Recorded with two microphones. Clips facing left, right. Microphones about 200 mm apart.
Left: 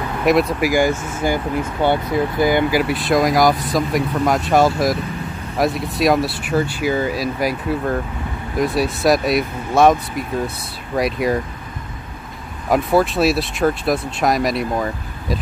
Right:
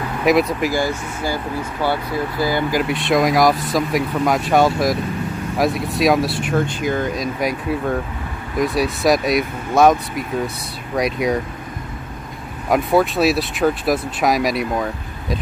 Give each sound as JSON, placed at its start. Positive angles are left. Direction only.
{"t": 0.2, "sound": "speech", "side_deg": 0}
{"t": 0.7, "sound": "speech", "side_deg": 15}
{"t": 2.7, "sound": "speech", "side_deg": 5}
{"t": 12.6, "sound": "speech", "side_deg": 0}